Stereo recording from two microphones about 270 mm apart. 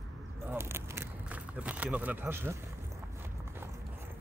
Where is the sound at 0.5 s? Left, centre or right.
Centre.